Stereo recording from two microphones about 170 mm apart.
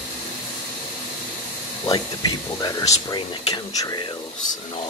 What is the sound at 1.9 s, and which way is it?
Speech, 25° left (ahead or behind).